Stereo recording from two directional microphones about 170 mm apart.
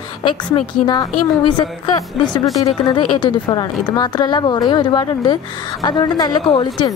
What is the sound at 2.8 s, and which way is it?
A woman's voice, 25° left (ahead or behind).